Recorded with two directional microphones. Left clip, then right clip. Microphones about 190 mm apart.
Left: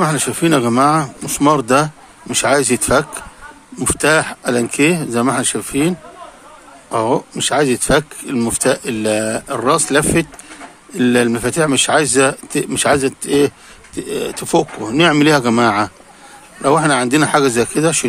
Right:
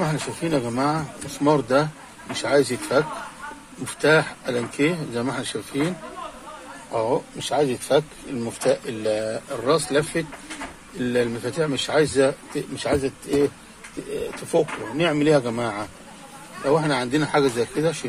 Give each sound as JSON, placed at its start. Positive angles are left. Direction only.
{"t": 0.0, "sound": "speech", "side_deg": 50}
{"t": 6.9, "sound": "speech", "side_deg": 50}
{"t": 14.2, "sound": "speech", "side_deg": 50}